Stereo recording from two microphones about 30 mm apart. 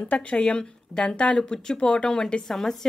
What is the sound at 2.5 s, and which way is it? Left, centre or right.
Speech, centre.